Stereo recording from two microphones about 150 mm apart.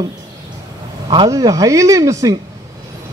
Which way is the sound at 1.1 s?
25° right (ahead or behind).